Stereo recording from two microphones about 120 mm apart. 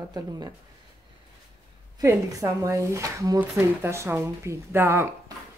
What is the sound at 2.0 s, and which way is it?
Speech, 25° right (ahead or behind).